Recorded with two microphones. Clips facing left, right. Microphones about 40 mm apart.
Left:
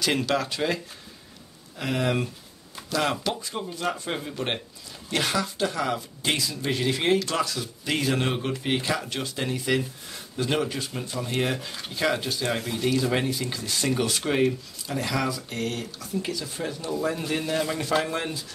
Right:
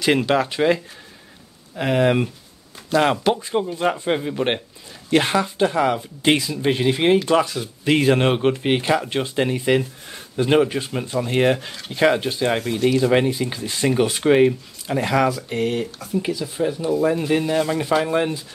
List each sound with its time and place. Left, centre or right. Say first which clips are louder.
0.0 s speech: right 7 dB; right
1.8 s speech: right 8 dB; right